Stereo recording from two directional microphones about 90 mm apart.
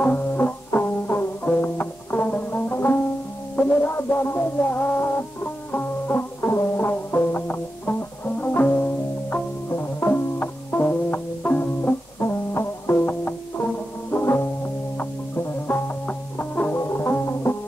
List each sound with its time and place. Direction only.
0.0 s music: 20° left (ahead or behind)